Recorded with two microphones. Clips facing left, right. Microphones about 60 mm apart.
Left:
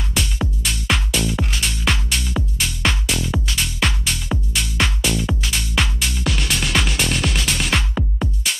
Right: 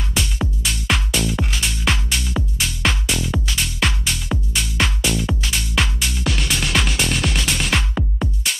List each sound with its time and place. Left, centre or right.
0.1 s music: centre